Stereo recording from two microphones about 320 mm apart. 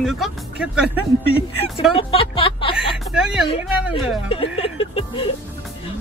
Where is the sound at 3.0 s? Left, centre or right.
Centre.